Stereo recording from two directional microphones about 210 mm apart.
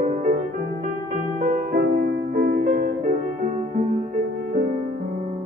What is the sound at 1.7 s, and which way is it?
Music, 45° right (ahead or behind).